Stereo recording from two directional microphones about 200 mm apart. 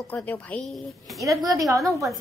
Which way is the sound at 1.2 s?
15° right (ahead or behind).